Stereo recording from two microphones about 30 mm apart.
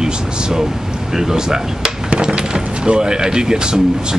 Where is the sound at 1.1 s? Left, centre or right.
Centre.